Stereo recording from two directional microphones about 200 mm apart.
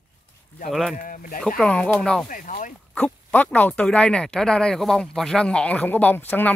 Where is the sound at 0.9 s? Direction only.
45° left (ahead or behind).